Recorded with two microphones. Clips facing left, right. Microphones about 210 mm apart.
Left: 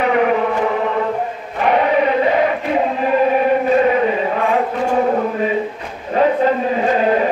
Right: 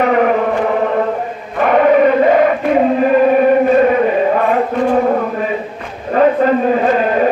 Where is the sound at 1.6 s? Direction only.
50° right (ahead or behind).